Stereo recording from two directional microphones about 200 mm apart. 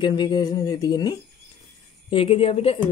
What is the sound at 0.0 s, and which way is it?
Speech, 20° left (ahead or behind).